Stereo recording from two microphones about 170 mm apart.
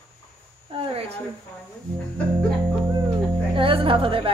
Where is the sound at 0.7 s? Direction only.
35° right (ahead or behind).